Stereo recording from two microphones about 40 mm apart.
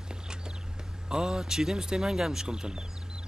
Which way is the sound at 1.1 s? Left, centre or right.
Centre.